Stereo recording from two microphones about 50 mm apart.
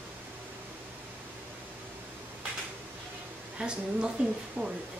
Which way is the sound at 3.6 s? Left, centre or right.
Centre.